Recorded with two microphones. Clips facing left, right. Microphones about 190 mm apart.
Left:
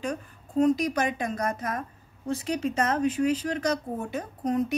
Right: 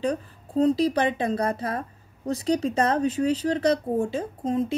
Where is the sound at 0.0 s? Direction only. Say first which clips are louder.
Right 5 dB; 35° right (ahead or behind).